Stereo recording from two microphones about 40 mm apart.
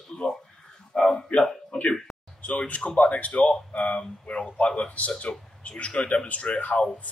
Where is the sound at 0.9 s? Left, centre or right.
Centre.